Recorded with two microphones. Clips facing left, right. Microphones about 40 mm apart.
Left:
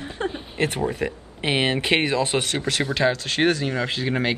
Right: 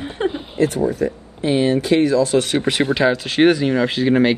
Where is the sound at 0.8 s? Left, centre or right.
Left.